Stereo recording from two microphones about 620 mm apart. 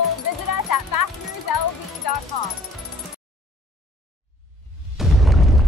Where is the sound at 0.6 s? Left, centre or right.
Left.